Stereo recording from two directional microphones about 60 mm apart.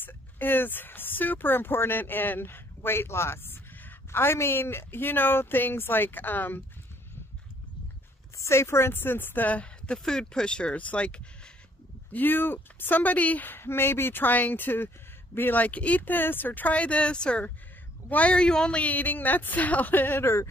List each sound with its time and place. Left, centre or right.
0.0 s speech: left
8.4 s speech: left
9.9 s speech: centre
12.1 s speech: left